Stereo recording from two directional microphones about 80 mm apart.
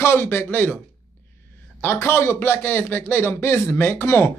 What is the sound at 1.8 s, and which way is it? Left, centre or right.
Speech, left.